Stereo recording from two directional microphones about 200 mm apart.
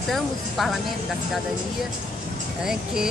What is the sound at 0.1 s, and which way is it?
Speech, centre (ahead or behind).